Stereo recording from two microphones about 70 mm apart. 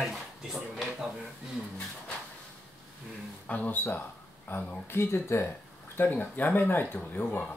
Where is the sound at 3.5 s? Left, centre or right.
Left.